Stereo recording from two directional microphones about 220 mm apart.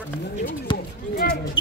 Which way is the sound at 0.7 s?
20° left (ahead or behind).